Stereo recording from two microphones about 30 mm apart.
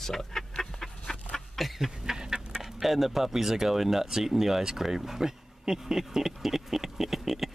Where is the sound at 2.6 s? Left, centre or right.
Centre.